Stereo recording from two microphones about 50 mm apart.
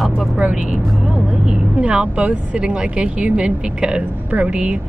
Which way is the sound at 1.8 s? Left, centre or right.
Right.